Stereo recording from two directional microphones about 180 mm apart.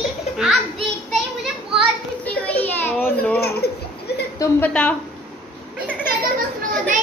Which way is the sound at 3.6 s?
60° left (ahead or behind).